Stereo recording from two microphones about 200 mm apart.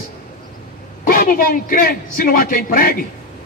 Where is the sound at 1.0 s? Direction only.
45° left (ahead or behind).